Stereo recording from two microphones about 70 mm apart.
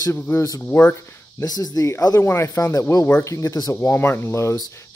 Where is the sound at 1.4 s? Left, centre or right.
Left.